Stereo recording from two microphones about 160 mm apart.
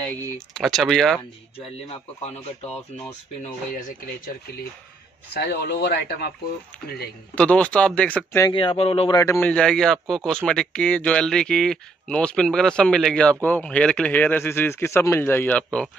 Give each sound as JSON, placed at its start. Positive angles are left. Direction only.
{"t": 0.6, "sound": "speech", "side_deg": 0}
{"t": 5.3, "sound": "speech", "side_deg": 90}
{"t": 7.3, "sound": "speech", "side_deg": 10}
{"t": 8.5, "sound": "speech", "side_deg": 35}
{"t": 9.1, "sound": "a man's voice", "side_deg": 20}
{"t": 9.5, "sound": "speech", "side_deg": 5}